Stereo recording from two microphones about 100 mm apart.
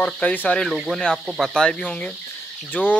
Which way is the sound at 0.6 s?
Centre (ahead or behind).